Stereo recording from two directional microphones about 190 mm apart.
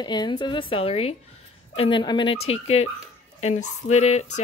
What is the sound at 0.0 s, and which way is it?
Speech, 25° left (ahead or behind).